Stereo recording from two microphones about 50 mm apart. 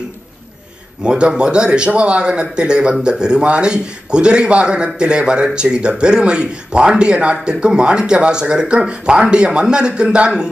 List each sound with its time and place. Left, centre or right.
1.0 s speech: centre